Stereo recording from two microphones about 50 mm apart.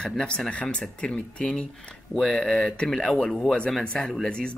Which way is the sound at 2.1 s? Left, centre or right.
Centre.